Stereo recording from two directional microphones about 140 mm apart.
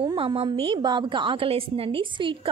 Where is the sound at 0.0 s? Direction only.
35° right (ahead or behind).